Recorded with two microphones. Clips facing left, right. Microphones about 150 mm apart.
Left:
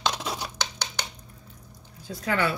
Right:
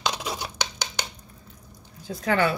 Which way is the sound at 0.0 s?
10° right (ahead or behind).